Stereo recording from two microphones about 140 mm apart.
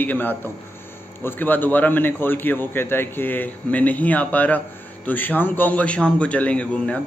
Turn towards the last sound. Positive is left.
turn(degrees=10)  # may be behind; listen again after turning